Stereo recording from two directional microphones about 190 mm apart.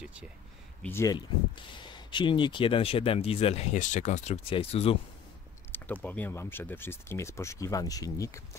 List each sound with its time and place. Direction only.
0.0 s speech: 5° right (ahead or behind)
0.8 s speech: 15° left (ahead or behind); by 4.9 s 30° left (ahead or behind)
5.7 s speech: 10° left (ahead or behind)